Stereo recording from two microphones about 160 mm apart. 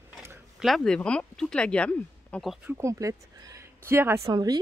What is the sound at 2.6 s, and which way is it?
Speech, 20° right (ahead or behind).